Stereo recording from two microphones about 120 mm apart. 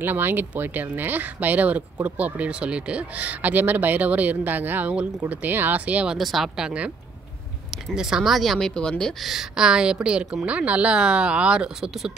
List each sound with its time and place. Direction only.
0.0 s speech: 15° right (ahead or behind)
6.1 s speech: centre (ahead or behind)